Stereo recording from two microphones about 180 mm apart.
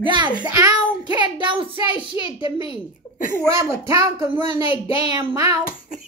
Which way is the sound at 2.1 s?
30° left (ahead or behind).